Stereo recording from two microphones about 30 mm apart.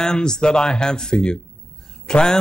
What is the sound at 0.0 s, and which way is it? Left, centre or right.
A man's voice, centre.